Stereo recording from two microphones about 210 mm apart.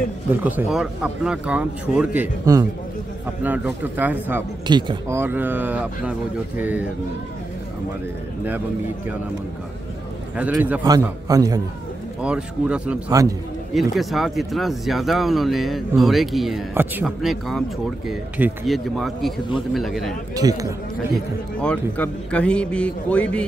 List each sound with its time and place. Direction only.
0.3 s speech: 10° right (ahead or behind)
4.6 s speech: 20° right (ahead or behind)
10.3 s speech: 5° right (ahead or behind)
12.2 s speech: 5° right (ahead or behind)
20.3 s speech: 15° right (ahead or behind)
21.1 s speech: 5° left (ahead or behind)